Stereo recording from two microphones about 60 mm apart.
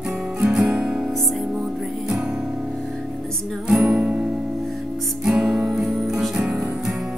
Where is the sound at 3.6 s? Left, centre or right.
Centre.